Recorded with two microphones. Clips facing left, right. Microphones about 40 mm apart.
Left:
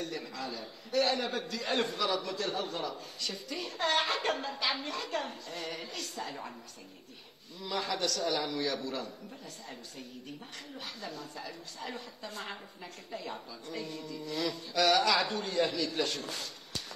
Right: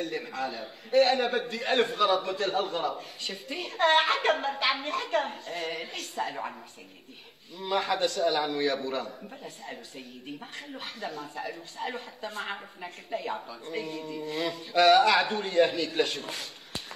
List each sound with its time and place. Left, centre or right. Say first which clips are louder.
0.0 s a man's voice: right 6 dB; right
7.5 s a man's voice: right 6 dB; right